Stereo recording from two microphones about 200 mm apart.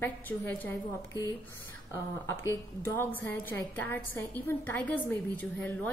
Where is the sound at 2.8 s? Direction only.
10° left (ahead or behind).